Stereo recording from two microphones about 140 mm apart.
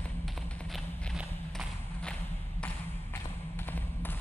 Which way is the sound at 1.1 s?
5° left (ahead or behind).